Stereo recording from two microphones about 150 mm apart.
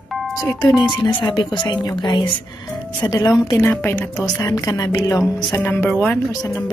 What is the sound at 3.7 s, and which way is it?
A woman's voice, 10° left (ahead or behind).